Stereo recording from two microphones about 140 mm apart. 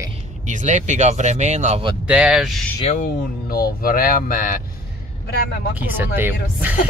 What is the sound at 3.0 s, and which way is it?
Speech, 90° left.